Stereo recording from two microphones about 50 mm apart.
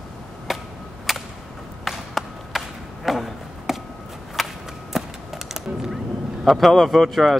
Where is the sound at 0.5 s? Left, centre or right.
Centre.